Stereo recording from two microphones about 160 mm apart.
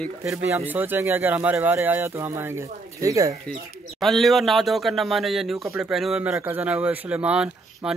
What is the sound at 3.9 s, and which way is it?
Speech, centre (ahead or behind).